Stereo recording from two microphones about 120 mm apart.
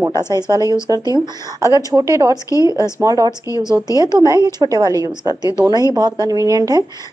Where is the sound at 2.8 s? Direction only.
30° right (ahead or behind).